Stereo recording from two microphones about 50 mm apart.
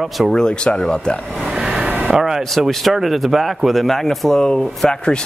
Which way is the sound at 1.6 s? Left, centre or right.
Centre.